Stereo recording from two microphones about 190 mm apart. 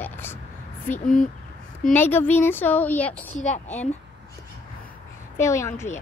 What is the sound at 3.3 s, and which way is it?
Speech, 40° left (ahead or behind).